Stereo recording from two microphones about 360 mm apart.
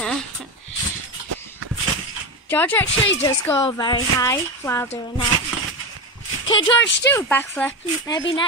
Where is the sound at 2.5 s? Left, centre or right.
Centre.